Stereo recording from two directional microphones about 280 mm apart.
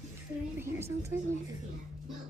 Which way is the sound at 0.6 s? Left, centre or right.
Centre.